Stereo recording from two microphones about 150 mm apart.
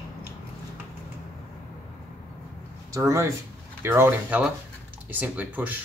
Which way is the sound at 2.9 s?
20° right (ahead or behind).